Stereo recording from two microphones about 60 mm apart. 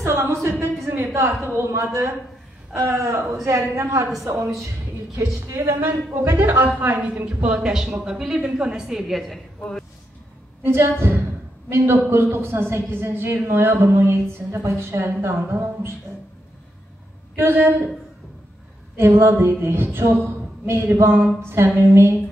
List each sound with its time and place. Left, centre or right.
0.2 s a sound: right
1.5 s a man's voice: right
1.8 s a woman's voice: right
5.5 s speech: right
6.6 s a woman's voice: right
8.9 s a woman's voice: centre
10.6 s a man's voice: right
17.4 s a man's voice: right
18.9 s a man's voice: right
20.2 s a sound: right
21.5 s a man's voice: right